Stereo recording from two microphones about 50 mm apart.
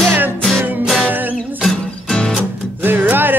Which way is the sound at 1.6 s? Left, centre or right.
Centre.